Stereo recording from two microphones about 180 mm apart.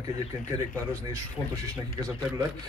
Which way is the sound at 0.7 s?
15° right (ahead or behind).